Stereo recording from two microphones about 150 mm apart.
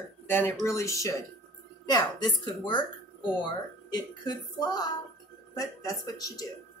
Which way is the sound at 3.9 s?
30° left (ahead or behind).